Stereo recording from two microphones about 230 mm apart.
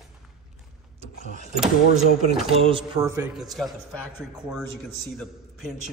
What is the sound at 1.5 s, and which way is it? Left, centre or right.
Speech, centre.